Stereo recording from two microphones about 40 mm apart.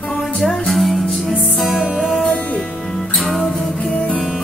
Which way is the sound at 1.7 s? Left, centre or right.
Right.